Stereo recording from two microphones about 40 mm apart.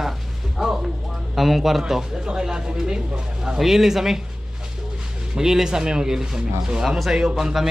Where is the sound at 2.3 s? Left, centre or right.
Centre.